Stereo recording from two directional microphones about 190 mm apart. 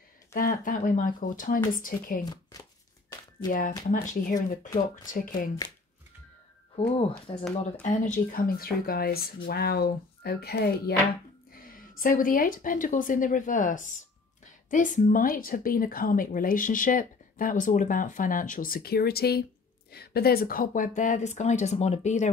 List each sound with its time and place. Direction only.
0.3 s speech: 50° left (ahead or behind)
3.1 s a sound: 25° left (ahead or behind)
3.9 s speech: 40° left (ahead or behind)
6.8 s speech: 30° left (ahead or behind)
7.8 s speech: 40° left (ahead or behind)
12.0 s speech: 45° left (ahead or behind)